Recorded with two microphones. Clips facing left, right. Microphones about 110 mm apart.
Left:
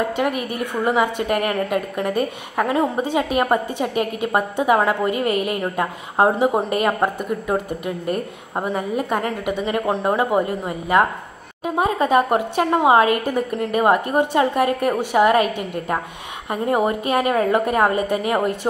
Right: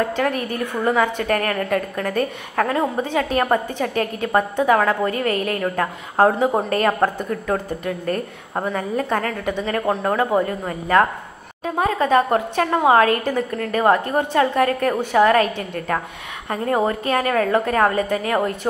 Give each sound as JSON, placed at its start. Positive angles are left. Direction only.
{"t": 0.1, "sound": "a woman's voice", "side_deg": 15}
{"t": 6.5, "sound": "a woman's voice", "side_deg": 10}